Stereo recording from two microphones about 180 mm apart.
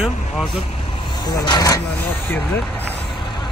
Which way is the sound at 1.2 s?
25° left (ahead or behind).